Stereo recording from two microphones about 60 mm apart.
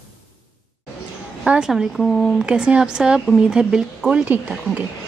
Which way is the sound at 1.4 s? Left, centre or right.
Centre.